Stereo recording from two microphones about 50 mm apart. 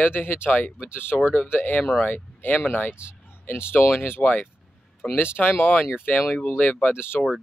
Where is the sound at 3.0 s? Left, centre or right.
Left.